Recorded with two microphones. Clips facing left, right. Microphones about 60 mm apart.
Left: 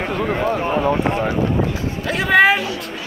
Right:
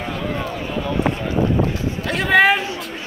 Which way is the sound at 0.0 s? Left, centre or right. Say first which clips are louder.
Left 5 dB; left.